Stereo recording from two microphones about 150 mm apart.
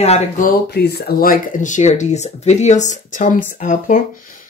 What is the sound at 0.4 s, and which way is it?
Speech, 80° left.